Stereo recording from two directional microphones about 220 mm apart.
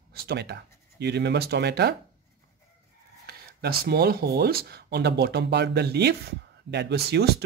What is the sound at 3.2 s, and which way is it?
Speech, 45° right (ahead or behind).